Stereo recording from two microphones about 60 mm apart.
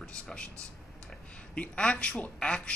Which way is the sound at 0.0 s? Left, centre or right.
Centre.